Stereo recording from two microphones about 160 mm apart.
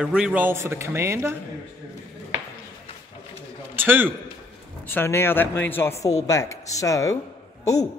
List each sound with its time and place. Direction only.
0.0 s speech: 5° right (ahead or behind)
3.7 s speech: 10° right (ahead or behind)
4.8 s speech: 15° left (ahead or behind)